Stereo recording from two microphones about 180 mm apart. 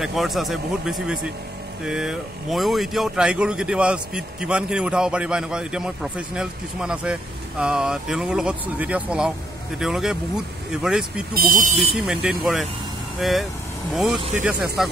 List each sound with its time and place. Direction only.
0.0 s a man's voice: centre (ahead or behind)
11.3 s speech: 50° right (ahead or behind)
11.9 s a man's voice: 5° right (ahead or behind)